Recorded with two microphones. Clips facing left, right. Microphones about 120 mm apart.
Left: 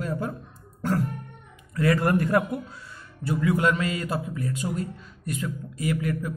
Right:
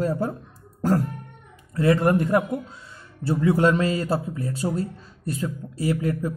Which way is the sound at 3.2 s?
30° right (ahead or behind).